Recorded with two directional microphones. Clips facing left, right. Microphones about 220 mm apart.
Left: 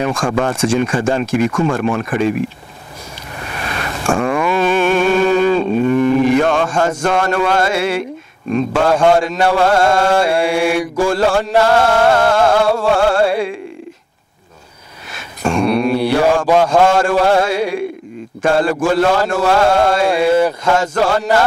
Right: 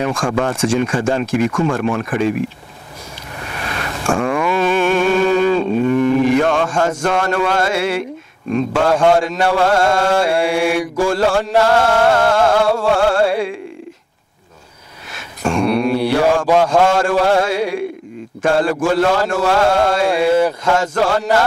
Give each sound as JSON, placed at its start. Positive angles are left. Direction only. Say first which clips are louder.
{"t": 0.0, "sound": "mantra", "louder": "left 1 dB", "side_deg": 25}
{"t": 3.3, "sound": "a sound", "louder": "left 1 dB", "side_deg": 15}
{"t": 6.4, "sound": "mantra", "louder": "left 1 dB", "side_deg": 25}
{"t": 15.0, "sound": "mantra", "louder": "left 1 dB", "side_deg": 20}